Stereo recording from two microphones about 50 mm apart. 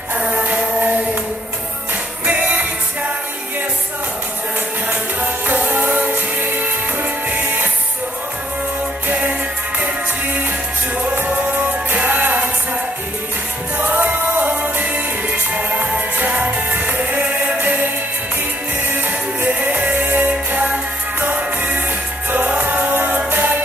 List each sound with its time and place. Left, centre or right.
0.1 s music: right
2.2 s music: right
4.8 s music: right
9.1 s music: right
13.7 s music: right
16.2 s music: right
18.9 s music: right